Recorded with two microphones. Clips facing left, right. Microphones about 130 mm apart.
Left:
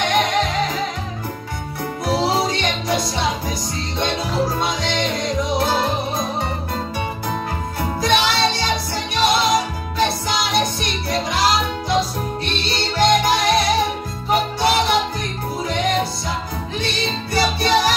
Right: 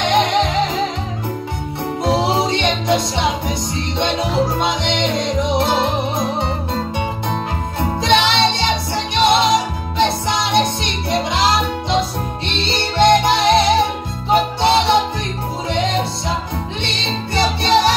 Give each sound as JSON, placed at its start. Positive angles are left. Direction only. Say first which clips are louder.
{"t": 0.0, "sound": "music", "louder": "right 3 dB", "side_deg": -25}
{"t": 2.0, "sound": "music", "louder": "right 2 dB", "side_deg": -20}
{"t": 8.0, "sound": "music", "louder": "right 3 dB", "side_deg": -25}
{"t": 12.6, "sound": "music", "louder": "right 4 dB", "side_deg": -25}
{"t": 16.8, "sound": "music", "louder": "even", "side_deg": -25}